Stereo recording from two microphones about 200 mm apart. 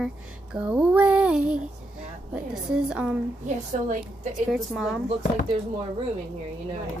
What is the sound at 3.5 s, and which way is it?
Speech, 40° right (ahead or behind).